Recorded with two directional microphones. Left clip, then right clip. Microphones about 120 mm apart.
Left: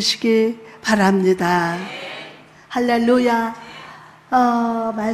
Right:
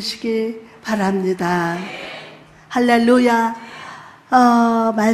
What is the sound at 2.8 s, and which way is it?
Speech, 20° right (ahead or behind).